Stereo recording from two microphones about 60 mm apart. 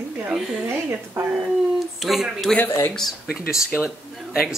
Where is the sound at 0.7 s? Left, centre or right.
Right.